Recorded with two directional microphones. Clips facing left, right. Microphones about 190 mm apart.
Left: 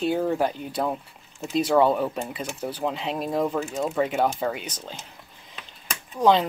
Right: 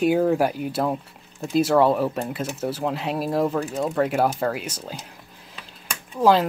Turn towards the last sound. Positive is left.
turn(degrees=-5)  # may be behind; listen again after turning